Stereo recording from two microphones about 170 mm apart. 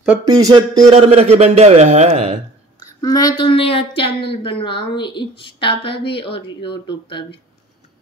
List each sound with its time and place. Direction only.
0.3 s speech: 20° right (ahead or behind)
0.9 s a man's voice: 35° right (ahead or behind)
3.0 s a woman's voice: 20° left (ahead or behind)